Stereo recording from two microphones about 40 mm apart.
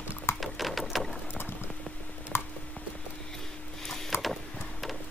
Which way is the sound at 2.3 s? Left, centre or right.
Centre.